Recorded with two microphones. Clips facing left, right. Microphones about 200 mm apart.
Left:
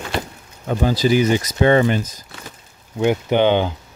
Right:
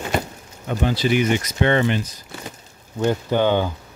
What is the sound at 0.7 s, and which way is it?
Speech, 40° left (ahead or behind).